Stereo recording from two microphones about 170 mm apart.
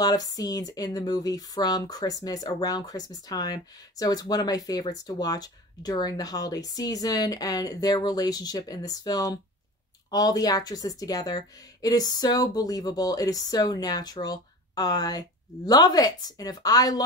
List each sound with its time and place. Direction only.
0.0 s speech: 20° left (ahead or behind)